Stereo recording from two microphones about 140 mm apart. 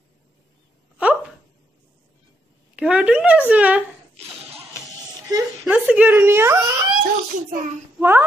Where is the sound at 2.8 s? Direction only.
10° right (ahead or behind).